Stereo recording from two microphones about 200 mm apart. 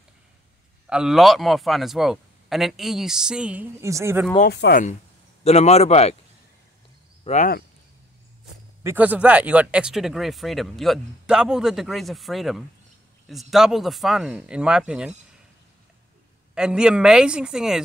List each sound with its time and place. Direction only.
0.8 s speech: 5° right (ahead or behind)
4.4 s speech: 55° left (ahead or behind)
5.4 s a man's voice: 30° left (ahead or behind)
7.2 s a man's voice: 35° left (ahead or behind)
8.8 s speech: 10° right (ahead or behind)
16.5 s speech: 5° right (ahead or behind)